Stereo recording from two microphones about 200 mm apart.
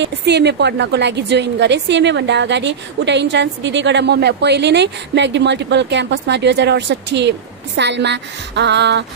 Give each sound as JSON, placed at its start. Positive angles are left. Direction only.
{"t": 0.0, "sound": "a woman's voice", "side_deg": -60}